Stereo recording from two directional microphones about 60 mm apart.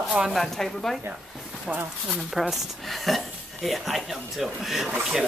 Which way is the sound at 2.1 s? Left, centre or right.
Centre.